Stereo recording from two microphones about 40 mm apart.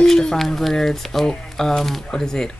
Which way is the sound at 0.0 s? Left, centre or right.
Centre.